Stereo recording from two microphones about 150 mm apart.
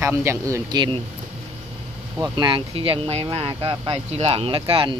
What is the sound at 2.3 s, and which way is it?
Speech, 35° right (ahead or behind).